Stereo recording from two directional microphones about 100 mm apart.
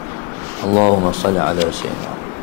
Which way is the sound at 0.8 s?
25° left (ahead or behind).